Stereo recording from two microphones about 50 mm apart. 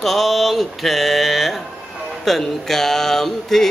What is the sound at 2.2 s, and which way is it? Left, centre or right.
Speech, centre.